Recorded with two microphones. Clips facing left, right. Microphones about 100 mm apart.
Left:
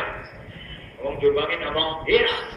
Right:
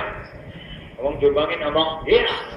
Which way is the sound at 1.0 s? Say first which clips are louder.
Right 3 dB; 35° right (ahead or behind).